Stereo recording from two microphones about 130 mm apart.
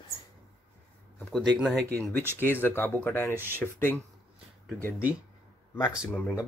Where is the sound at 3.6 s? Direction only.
15° left (ahead or behind).